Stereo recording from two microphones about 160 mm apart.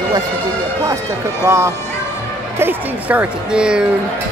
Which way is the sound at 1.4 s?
15° right (ahead or behind).